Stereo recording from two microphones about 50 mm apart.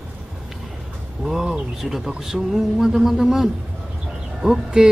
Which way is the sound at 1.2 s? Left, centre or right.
Centre.